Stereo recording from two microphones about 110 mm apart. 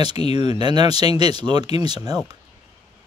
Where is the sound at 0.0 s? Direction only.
40° right (ahead or behind).